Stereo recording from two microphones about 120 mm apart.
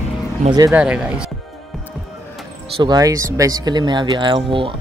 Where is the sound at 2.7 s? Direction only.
40° right (ahead or behind).